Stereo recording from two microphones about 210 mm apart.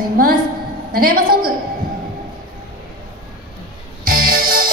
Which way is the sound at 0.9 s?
45° right (ahead or behind).